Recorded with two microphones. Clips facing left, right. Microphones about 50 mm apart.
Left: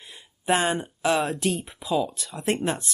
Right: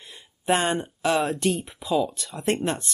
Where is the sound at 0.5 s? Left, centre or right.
Centre.